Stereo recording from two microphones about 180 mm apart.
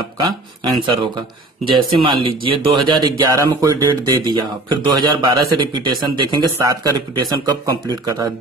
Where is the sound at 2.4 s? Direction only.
30° right (ahead or behind).